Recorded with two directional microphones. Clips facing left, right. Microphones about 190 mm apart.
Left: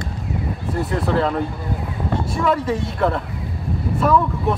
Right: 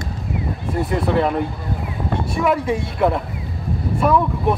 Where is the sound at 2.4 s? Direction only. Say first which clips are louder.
Right 1 dB; 10° right (ahead or behind).